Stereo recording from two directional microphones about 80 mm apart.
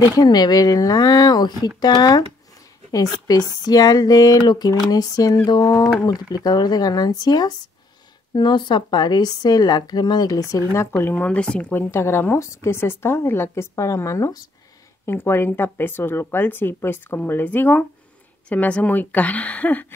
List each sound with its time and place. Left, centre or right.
0.2 s speech: left
8.4 s speech: left
11.0 s speech: left
11.2 s speech: centre
11.7 s speech: left
13.7 s speech: left
15.0 s speech: left